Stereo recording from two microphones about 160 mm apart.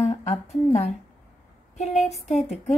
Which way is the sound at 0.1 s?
45° left (ahead or behind).